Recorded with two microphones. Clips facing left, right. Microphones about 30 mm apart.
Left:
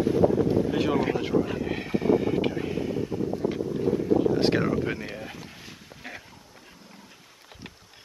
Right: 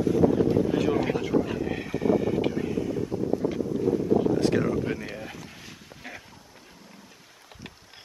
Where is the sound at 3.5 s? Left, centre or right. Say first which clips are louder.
Left 2 dB; centre.